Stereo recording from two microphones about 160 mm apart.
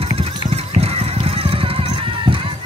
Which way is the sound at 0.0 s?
40° right (ahead or behind).